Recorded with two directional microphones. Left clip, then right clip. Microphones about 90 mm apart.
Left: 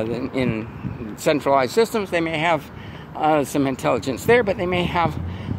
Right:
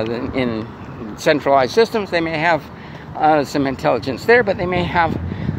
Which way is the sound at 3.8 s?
55° left (ahead or behind).